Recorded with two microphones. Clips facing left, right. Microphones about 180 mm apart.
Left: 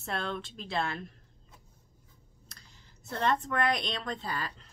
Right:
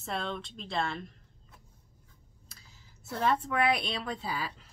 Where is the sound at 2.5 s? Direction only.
5° right (ahead or behind).